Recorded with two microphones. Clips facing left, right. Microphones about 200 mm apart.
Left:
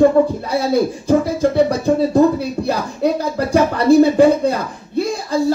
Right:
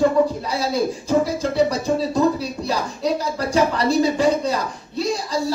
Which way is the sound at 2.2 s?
55° left (ahead or behind).